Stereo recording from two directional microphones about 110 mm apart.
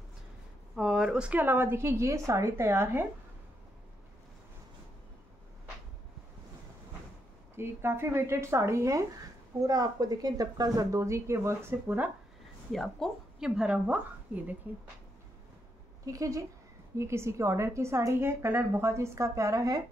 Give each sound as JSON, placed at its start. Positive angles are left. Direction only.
{"t": 0.7, "sound": "a woman's voice", "side_deg": -5}
{"t": 7.5, "sound": "a woman's voice", "side_deg": -20}
{"t": 12.7, "sound": "speech", "side_deg": 0}
{"t": 13.6, "sound": "a woman's voice", "side_deg": -10}
{"t": 16.1, "sound": "a woman's voice", "side_deg": -30}